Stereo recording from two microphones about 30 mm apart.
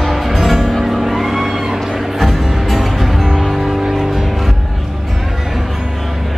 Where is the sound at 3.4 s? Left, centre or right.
Centre.